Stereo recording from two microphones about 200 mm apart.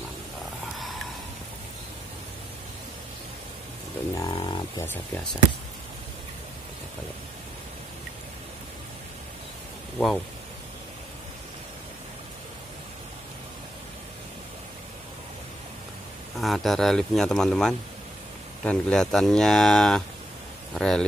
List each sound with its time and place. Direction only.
4.2 s a sound: 25° left (ahead or behind)
9.9 s speech: centre (ahead or behind)
16.3 s speech: centre (ahead or behind)